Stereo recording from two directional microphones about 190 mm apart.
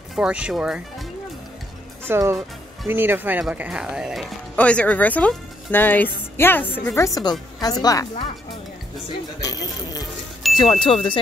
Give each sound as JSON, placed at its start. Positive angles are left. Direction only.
{"t": 0.1, "sound": "speech", "side_deg": -5}
{"t": 2.0, "sound": "speech", "side_deg": -15}
{"t": 9.4, "sound": "speech", "side_deg": 20}